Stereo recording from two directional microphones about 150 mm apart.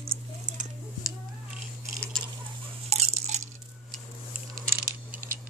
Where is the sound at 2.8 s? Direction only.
45° right (ahead or behind).